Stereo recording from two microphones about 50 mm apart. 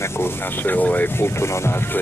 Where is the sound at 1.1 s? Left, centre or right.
Left.